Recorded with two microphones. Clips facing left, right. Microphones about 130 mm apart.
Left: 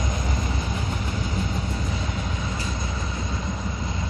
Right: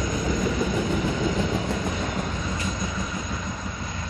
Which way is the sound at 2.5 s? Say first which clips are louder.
Right 2 dB; 30° left (ahead or behind).